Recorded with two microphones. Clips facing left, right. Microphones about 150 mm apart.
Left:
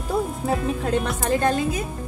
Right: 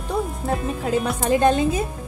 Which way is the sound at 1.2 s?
20° right (ahead or behind).